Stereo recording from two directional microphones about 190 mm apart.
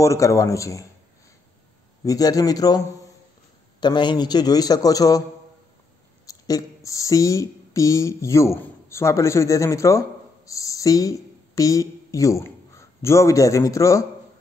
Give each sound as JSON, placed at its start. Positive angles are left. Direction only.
{"t": 0.0, "sound": "a man's voice", "side_deg": 15}
{"t": 2.0, "sound": "a man's voice", "side_deg": 20}
{"t": 6.2, "sound": "speech", "side_deg": 20}